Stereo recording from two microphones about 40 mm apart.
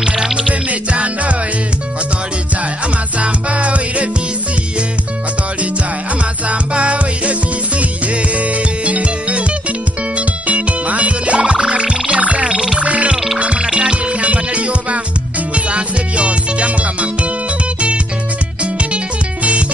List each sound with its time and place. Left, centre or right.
0.5 s music: right
3.2 s music: right
6.4 s music: right
12.4 s frog: centre
12.7 s frog: right
13.6 s music: right
14.2 s music: right